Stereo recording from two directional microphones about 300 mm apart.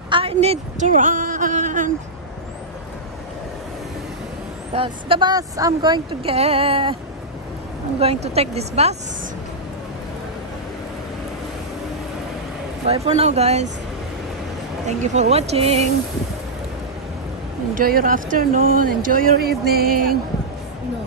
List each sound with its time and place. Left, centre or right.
0.1 s a woman's voice: centre
4.7 s a woman's voice: centre
8.0 s speech: centre
12.8 s speech: centre
14.9 s speech: right
17.7 s speech: right